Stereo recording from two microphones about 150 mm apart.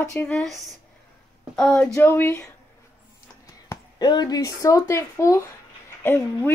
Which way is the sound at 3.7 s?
25° left (ahead or behind).